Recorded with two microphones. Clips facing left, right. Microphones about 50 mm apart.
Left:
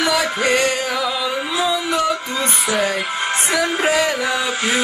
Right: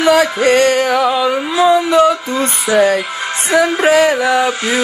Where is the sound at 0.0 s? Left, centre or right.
Right.